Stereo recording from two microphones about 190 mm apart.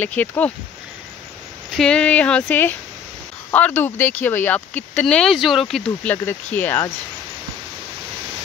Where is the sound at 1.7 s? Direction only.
5° left (ahead or behind).